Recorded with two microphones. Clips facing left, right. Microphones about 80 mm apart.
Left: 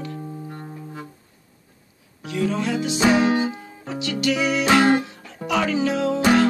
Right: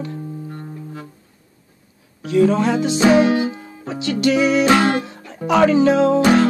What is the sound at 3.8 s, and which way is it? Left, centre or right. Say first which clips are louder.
Music: right 5 dB; right.